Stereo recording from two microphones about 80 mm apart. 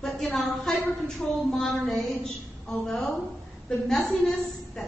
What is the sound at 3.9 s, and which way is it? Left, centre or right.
Speech, centre.